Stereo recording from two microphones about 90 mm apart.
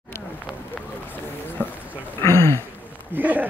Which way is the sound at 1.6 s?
20° left (ahead or behind).